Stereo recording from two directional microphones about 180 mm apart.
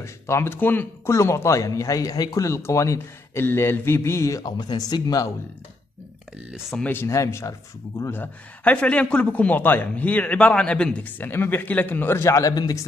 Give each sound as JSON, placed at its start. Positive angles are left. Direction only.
{"t": 0.0, "sound": "speech", "side_deg": 15}
{"t": 6.5, "sound": "speech", "side_deg": 0}
{"t": 6.9, "sound": "speech", "side_deg": 15}